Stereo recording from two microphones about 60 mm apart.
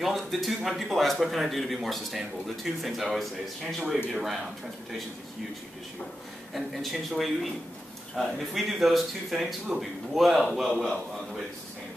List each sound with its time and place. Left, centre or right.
0.0 s speech: centre
6.5 s speech: centre